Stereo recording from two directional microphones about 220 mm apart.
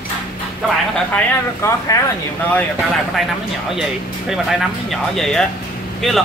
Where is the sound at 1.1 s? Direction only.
15° left (ahead or behind).